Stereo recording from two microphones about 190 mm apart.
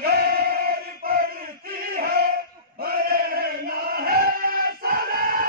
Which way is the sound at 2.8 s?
55° right (ahead or behind).